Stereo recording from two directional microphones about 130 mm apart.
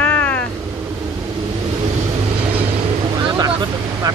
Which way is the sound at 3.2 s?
30° right (ahead or behind).